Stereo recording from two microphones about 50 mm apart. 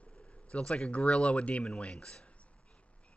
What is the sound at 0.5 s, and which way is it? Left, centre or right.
Speech, centre.